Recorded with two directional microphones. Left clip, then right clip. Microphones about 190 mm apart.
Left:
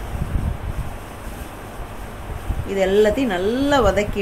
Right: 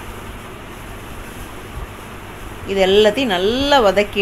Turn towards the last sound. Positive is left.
turn(degrees=-10)  # may be behind; listen again after turning